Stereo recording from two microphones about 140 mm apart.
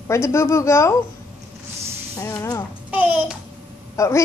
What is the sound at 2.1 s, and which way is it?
Speech, 20° left (ahead or behind).